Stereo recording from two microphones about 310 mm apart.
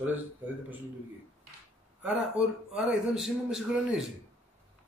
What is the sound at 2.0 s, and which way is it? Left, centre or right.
A man's voice, centre.